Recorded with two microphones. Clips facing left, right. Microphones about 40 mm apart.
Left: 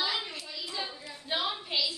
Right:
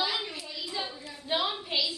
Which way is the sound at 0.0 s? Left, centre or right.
Centre.